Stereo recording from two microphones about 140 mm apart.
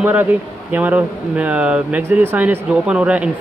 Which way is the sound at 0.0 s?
10° right (ahead or behind).